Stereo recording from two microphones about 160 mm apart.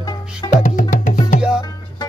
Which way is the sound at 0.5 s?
55° left (ahead or behind).